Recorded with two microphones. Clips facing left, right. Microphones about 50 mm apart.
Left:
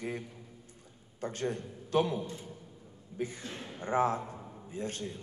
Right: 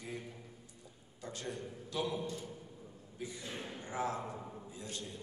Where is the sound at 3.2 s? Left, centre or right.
Left.